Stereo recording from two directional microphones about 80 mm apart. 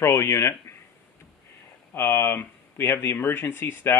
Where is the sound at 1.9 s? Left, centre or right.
Left.